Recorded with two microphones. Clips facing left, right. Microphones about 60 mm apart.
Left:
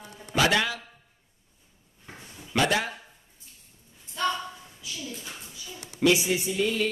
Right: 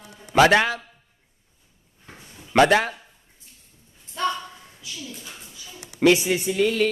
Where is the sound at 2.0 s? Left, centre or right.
Centre.